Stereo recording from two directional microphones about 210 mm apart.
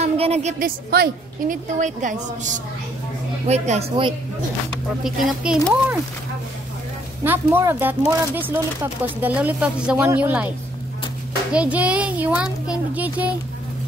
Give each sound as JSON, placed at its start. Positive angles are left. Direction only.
{"t": 0.0, "sound": "a woman's voice", "side_deg": -30}
{"t": 3.4, "sound": "a woman's voice", "side_deg": -30}
{"t": 5.0, "sound": "speech", "side_deg": -5}
{"t": 7.2, "sound": "a child's voice", "side_deg": -10}
{"t": 9.0, "sound": "a child's voice", "side_deg": -10}
{"t": 11.5, "sound": "a child's voice", "side_deg": -5}